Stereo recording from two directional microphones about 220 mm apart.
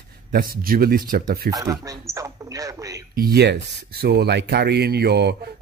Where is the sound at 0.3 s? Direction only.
40° right (ahead or behind).